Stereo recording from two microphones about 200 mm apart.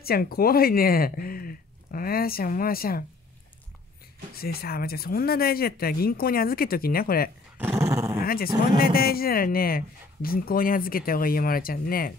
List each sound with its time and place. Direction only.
0.0 s speech: 50° left (ahead or behind)
4.4 s speech: 50° left (ahead or behind)
7.5 s dog: 10° right (ahead or behind)
8.2 s a sound: 50° left (ahead or behind)
8.9 s speech: 50° left (ahead or behind)